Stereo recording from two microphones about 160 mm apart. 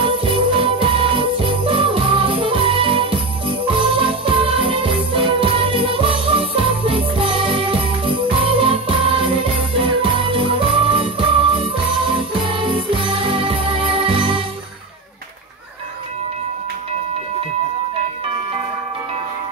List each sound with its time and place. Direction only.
0.0 s jingle bell: 35° right (ahead or behind)